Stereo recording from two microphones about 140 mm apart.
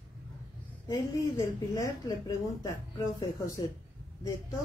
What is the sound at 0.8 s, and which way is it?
A woman's voice, 25° left (ahead or behind).